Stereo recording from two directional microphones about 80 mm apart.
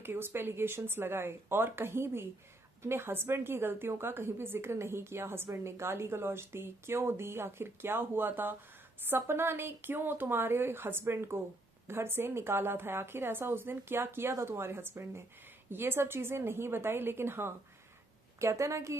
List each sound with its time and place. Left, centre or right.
0.0 s a woman's voice: right